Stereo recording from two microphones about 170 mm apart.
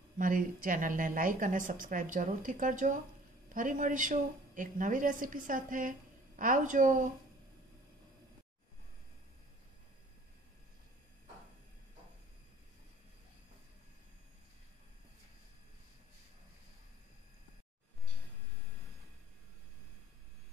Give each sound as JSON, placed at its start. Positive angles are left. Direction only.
{"t": 0.2, "sound": "a woman's voice", "side_deg": -55}